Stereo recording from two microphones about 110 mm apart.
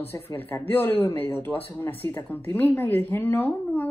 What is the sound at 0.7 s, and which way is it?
Speech, 15° left (ahead or behind).